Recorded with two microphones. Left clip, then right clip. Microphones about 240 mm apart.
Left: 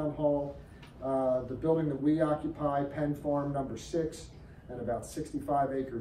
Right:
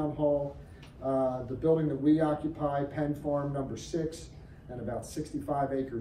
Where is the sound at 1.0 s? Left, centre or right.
Centre.